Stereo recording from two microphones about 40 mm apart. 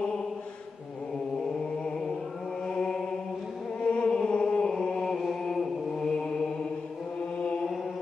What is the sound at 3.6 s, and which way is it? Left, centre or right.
Chant, left.